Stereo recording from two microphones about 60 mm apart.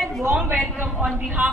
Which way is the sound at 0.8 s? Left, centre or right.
Centre.